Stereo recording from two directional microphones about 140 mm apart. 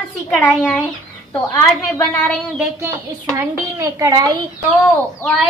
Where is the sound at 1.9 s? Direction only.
10° left (ahead or behind).